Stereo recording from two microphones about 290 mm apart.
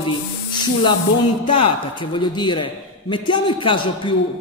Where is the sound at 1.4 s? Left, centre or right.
Centre.